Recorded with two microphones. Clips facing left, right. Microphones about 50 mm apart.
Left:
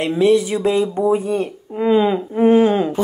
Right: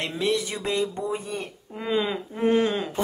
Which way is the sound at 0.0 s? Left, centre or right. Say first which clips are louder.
Left 11 dB; centre.